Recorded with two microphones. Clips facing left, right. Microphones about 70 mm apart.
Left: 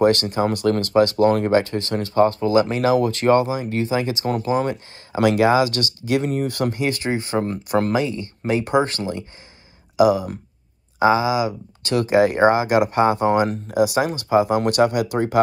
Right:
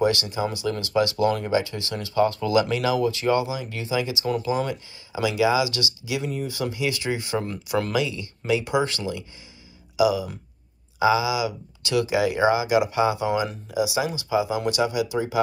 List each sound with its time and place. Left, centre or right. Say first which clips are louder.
0.0 s speech: left 6 dB; left